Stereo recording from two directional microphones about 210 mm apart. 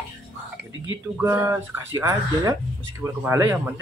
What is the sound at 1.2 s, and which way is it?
A man's voice, 10° right (ahead or behind).